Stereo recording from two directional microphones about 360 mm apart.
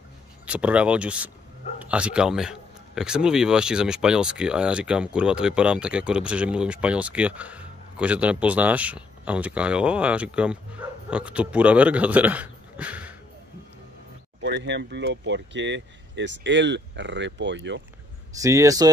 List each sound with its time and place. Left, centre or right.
0.5 s speech: centre
14.4 s speech: right
18.3 s speech: centre